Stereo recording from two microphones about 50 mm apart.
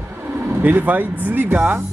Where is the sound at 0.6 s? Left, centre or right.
Right.